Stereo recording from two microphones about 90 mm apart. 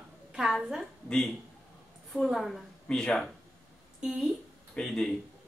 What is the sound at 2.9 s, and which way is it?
Speech, 10° left (ahead or behind).